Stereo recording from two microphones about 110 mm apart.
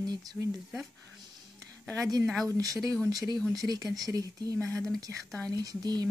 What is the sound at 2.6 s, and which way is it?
Speech, 35° right (ahead or behind).